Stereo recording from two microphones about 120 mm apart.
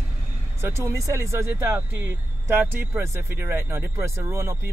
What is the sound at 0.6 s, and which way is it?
Speech, 20° right (ahead or behind).